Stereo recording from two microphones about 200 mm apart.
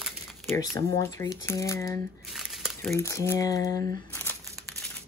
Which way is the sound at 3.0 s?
15° left (ahead or behind).